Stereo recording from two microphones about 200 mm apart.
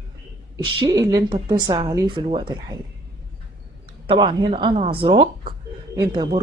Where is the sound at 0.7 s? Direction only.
20° right (ahead or behind).